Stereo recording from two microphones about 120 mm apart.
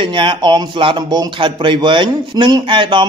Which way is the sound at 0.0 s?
45° right (ahead or behind).